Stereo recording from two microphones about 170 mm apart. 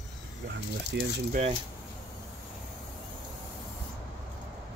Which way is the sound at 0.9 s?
90° right.